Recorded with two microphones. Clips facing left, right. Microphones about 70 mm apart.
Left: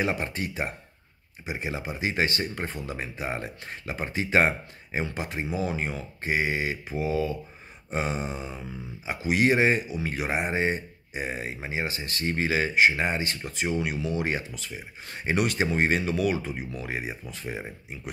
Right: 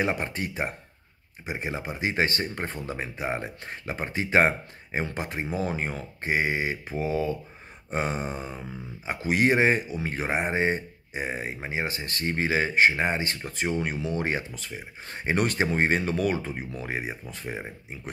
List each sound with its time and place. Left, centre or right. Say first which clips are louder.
0.0 s speech: right 1 dB; right
7.9 s grunt: right 1 dB; right
9.0 s speech: even; right